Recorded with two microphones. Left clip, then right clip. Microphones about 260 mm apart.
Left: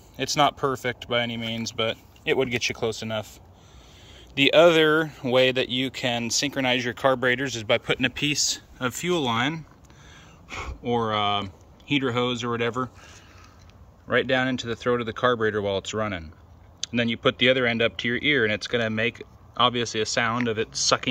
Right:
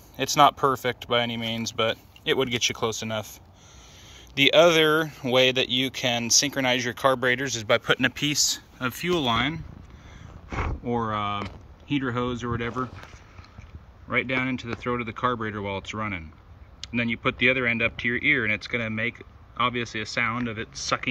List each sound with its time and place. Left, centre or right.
0.1 s speech: centre
4.4 s speech: centre
10.8 s speech: centre
14.0 s speech: centre